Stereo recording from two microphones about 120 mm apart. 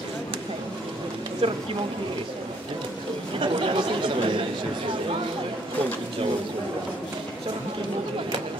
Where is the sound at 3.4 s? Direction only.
45° right (ahead or behind).